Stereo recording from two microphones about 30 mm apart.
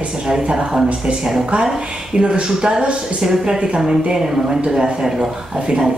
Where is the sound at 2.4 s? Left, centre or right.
Right.